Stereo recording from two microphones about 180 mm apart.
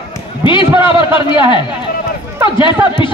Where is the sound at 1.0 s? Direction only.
25° left (ahead or behind).